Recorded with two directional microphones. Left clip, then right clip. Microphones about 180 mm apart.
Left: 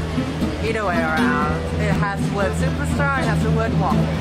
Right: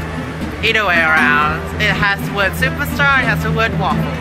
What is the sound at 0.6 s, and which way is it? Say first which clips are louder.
Speech: right 9 dB; 15° right (ahead or behind).